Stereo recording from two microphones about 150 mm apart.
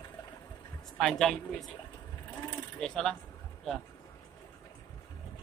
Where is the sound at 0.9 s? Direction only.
5° left (ahead or behind).